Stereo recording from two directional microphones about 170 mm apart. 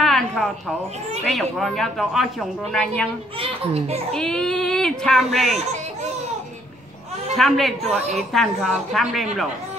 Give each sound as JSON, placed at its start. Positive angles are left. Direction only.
{"t": 0.0, "sound": "a sound", "side_deg": 0}
{"t": 1.2, "sound": "speech", "side_deg": 0}
{"t": 3.3, "sound": "a child's voice", "side_deg": -35}
{"t": 4.1, "sound": "speech", "side_deg": 5}
{"t": 7.3, "sound": "speech", "side_deg": 0}